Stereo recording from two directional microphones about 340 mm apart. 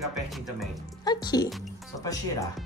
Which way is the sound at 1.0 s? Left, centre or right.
Centre.